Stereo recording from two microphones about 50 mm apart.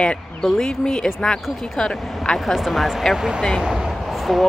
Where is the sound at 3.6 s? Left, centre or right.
Centre.